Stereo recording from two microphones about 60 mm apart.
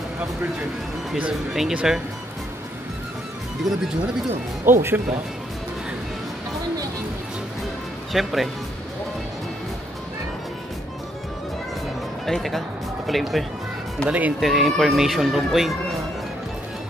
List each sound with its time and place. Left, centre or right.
1.3 s speech: centre
4.6 s speech: right
8.1 s speech: centre
12.3 s speech: centre
14.0 s speech: right
14.4 s speech: centre